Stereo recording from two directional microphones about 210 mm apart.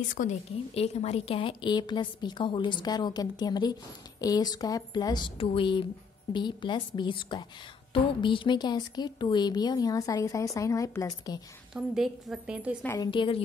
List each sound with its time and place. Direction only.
0.1 s a woman's voice: 35° left (ahead or behind); by 11.4 s 20° left (ahead or behind)
11.7 s a woman's voice: centre (ahead or behind)
12.8 s a woman's voice: 15° left (ahead or behind)